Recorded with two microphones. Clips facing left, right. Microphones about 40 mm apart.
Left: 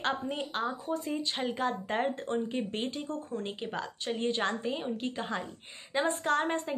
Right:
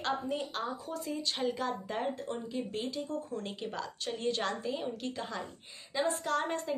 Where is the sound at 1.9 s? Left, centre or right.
Left.